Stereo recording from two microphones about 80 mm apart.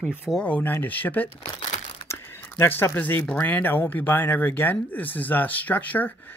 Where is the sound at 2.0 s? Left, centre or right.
Left.